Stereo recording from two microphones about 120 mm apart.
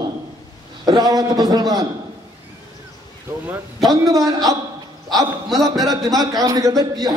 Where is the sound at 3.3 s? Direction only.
25° right (ahead or behind).